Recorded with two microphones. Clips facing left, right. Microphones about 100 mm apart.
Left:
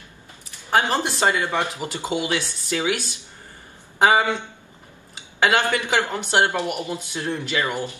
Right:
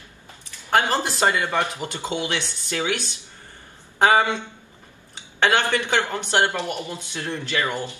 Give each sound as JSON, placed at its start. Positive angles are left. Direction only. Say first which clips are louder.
{"t": 0.7, "sound": "speech", "louder": "even", "side_deg": 15}
{"t": 4.0, "sound": "speech", "louder": "even", "side_deg": 15}
{"t": 5.4, "sound": "speech", "louder": "even", "side_deg": 10}